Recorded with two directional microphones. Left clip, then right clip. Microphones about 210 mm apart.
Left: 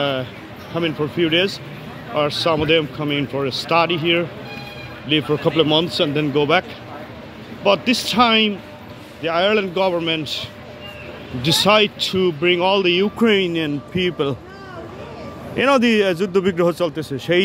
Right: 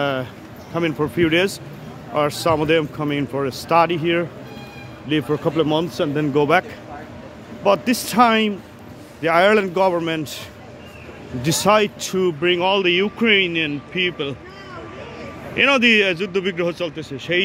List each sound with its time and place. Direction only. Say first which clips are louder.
0.0 s a man's voice: left 1 dB; 5° right (ahead or behind)
7.6 s speech: left 1 dB; 5° right (ahead or behind)
9.2 s speech: right 3 dB; 20° right (ahead or behind)
11.4 s a man's voice: left 2 dB; 5° right (ahead or behind); by 14.3 s 20° left (ahead or behind)
15.5 s speech: right 1 dB; 10° left (ahead or behind)